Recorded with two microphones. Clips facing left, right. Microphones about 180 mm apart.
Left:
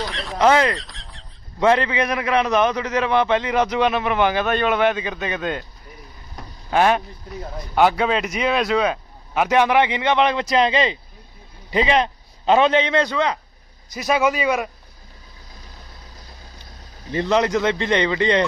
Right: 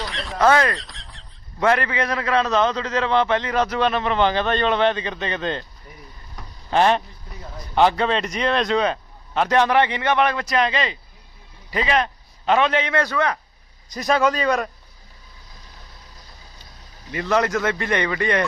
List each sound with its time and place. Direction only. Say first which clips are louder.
0.0 s a sound: left 2 dB; centre (ahead or behind)
0.4 s speech: left 1 dB; 20° left (ahead or behind)
0.7 s fowl: left 2 dB; centre (ahead or behind)
1.6 s a man's voice: left 2 dB; 20° left (ahead or behind)
6.7 s a man's voice: even; 5° left (ahead or behind)
13.9 s a man's voice: even; 5° left (ahead or behind)
17.1 s speech: left 2 dB; 25° left (ahead or behind)